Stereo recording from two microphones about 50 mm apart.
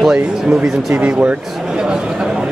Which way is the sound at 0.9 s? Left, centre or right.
Right.